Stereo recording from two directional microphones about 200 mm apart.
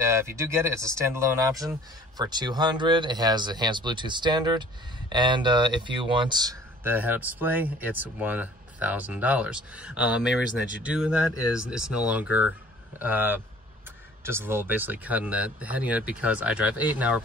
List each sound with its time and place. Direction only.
0.0 s speech: 15° right (ahead or behind)